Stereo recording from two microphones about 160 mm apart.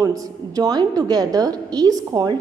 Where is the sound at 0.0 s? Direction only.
20° right (ahead or behind).